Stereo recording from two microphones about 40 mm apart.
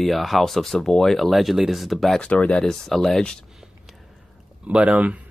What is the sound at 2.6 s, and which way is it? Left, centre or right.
Speech, centre.